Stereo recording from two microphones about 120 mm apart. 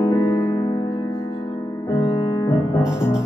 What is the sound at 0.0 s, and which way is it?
Music, 30° left (ahead or behind).